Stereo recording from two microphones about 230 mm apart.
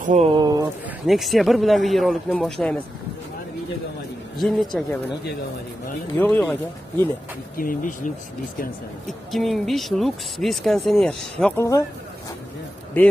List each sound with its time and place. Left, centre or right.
0.0 s speech: right
0.4 s speech: centre
1.0 s speech: centre
4.4 s speech: centre
6.1 s speech: centre
7.5 s speech: left
9.0 s speech: centre